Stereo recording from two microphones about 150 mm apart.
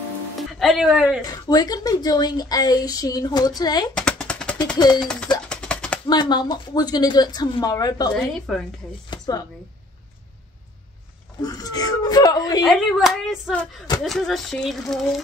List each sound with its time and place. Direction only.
0.4 s speech: centre (ahead or behind)
1.2 s a woman's voice: 25° left (ahead or behind)
3.9 s a sound: 5° left (ahead or behind)
4.7 s a woman's voice: 25° left (ahead or behind)
5.0 s a sound: 5° left (ahead or behind)
6.0 s a woman's voice: 25° left (ahead or behind)
8.1 s speech: 5° left (ahead or behind)
9.1 s a sound: 25° left (ahead or behind)
11.4 s a woman's voice: 25° left (ahead or behind)
12.6 s speech: centre (ahead or behind)